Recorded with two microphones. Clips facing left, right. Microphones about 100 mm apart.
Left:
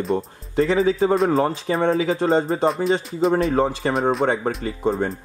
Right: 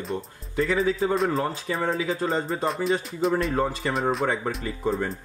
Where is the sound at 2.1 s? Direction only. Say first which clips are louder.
Left 7 dB; 30° left (ahead or behind).